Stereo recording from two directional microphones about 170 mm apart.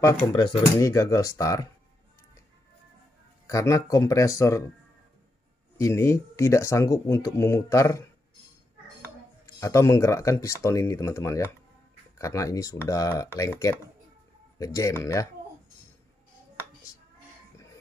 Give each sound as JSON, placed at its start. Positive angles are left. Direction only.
{"t": 0.3, "sound": "speech", "side_deg": 25}
{"t": 3.4, "sound": "speech", "side_deg": 20}
{"t": 5.8, "sound": "speech", "side_deg": 15}
{"t": 9.6, "sound": "speech", "side_deg": 15}